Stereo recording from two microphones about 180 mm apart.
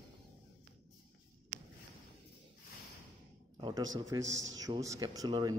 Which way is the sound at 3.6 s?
30° right (ahead or behind).